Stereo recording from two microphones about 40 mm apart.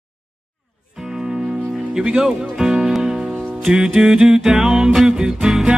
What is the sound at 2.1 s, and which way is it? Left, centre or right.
Music, centre.